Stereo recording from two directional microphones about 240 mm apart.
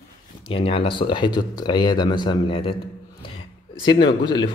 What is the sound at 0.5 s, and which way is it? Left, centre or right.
Speech, left.